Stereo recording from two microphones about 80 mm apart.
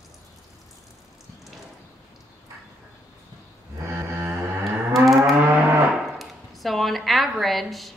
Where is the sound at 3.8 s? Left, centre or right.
Right.